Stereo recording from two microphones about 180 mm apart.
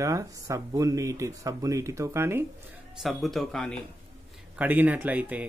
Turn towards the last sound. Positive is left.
turn(degrees=-10)  # may be behind; listen again after turning